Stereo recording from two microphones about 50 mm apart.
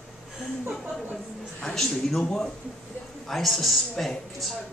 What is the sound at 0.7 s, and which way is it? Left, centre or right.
A woman's voice, centre.